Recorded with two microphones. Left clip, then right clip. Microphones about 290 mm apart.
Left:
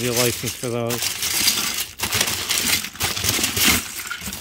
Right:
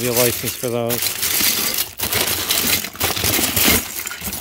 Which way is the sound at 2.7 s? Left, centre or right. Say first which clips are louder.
Right 2 dB; centre.